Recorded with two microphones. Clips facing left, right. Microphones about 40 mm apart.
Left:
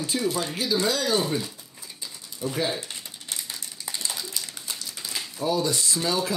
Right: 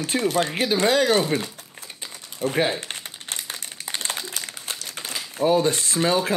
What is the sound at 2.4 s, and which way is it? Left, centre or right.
Crumpling, right.